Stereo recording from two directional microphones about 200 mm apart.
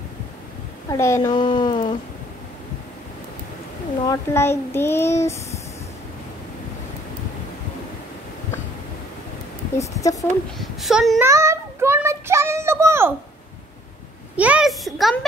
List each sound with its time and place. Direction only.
0.8 s speech: 15° left (ahead or behind)
1.3 s a sound: 25° left (ahead or behind)
4.1 s speech: 10° left (ahead or behind)
9.8 s speech: 15° left (ahead or behind)
10.6 s a woman's voice: centre (ahead or behind)
11.2 s child singing: 15° right (ahead or behind)
14.3 s a woman's voice: 5° right (ahead or behind)